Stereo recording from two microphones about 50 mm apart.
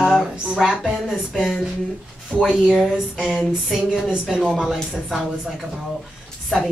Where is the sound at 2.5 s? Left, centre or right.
Centre.